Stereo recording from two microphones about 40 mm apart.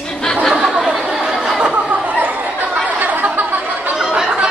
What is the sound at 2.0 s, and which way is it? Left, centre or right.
Chatter, right.